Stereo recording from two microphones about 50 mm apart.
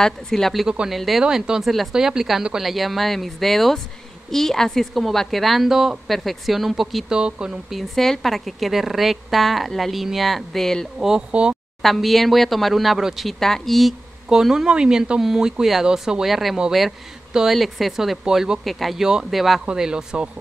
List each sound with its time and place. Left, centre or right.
0.0 s a woman's voice: centre
1.2 s speech: centre
1.6 s a woman's voice: centre
6.0 s a woman's voice: centre
7.1 s speech: centre
7.7 s a woman's voice: centre
11.0 s speech: centre
11.8 s a woman's voice: centre
14.3 s a woman's voice: centre
17.6 s a woman's voice: centre
19.7 s speech: centre